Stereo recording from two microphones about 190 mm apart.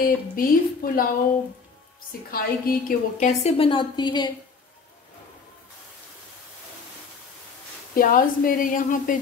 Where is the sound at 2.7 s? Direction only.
50° left (ahead or behind).